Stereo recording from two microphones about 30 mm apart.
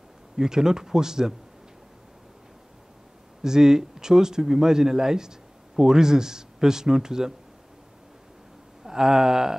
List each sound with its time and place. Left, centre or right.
0.4 s speech: centre
3.4 s speech: centre
8.8 s a sound: centre